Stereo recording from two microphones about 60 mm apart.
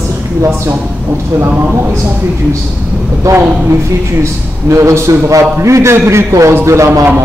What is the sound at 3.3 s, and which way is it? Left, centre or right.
Speech, right.